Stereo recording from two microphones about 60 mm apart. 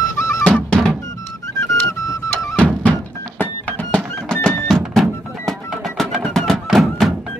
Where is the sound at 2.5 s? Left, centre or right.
Left.